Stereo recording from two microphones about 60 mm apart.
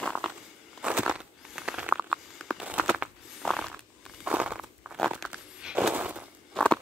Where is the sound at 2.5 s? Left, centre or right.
Right.